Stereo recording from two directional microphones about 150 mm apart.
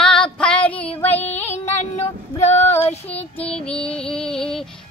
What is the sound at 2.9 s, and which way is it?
Child singing, 40° left (ahead or behind).